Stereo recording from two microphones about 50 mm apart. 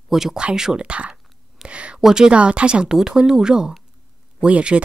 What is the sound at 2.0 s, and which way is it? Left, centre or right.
Speech, centre.